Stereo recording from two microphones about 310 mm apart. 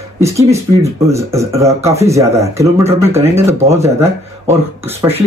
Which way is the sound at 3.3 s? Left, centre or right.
Centre.